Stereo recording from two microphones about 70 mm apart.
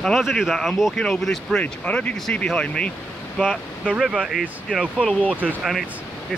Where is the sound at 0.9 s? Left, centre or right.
Centre.